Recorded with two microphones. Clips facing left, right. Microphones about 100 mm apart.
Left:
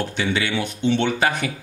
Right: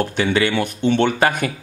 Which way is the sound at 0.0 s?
50° right (ahead or behind).